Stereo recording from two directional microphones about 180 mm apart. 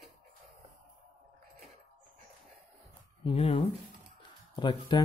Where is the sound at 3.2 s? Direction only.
30° left (ahead or behind).